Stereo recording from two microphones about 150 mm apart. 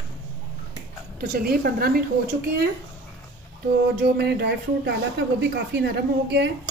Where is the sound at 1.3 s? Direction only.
90° right.